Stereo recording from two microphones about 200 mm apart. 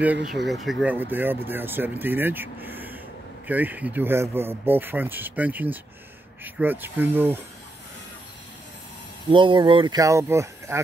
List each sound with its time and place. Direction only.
0.3 s speech: centre (ahead or behind)
9.3 s speech: 25° right (ahead or behind)